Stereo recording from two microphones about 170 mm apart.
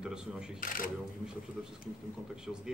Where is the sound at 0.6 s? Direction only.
50° left (ahead or behind).